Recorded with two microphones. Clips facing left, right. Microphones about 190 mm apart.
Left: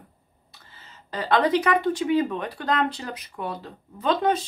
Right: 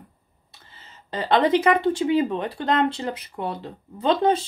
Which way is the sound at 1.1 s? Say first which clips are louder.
Right 2 dB; 25° right (ahead or behind).